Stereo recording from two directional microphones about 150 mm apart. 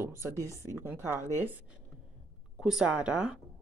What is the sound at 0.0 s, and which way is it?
Speech, 15° right (ahead or behind).